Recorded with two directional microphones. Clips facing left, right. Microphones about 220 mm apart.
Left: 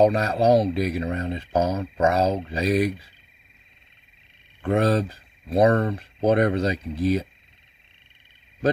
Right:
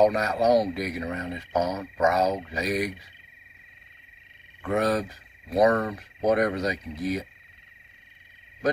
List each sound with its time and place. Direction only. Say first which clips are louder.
0.0 s speech: left 3 dB; 30° left (ahead or behind)
4.6 s speech: left 4 dB; 30° left (ahead or behind)